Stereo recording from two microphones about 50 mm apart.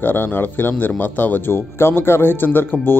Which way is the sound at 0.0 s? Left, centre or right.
Left.